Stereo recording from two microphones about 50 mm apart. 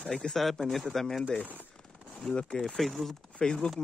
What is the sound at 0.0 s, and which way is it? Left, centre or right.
Speech, centre.